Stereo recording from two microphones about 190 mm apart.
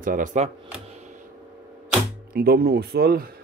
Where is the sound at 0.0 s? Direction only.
45° right (ahead or behind).